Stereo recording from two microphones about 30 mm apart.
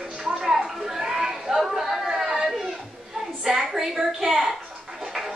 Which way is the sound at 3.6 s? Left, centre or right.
Centre.